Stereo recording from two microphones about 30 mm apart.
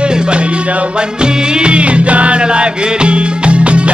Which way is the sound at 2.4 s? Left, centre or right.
Right.